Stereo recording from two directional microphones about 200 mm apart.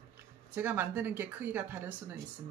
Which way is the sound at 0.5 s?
10° right (ahead or behind).